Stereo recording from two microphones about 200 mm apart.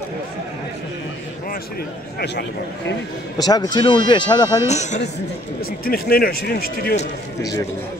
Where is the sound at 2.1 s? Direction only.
55° left (ahead or behind).